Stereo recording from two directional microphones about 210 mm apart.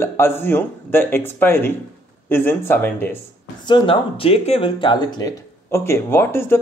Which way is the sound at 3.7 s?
25° left (ahead or behind).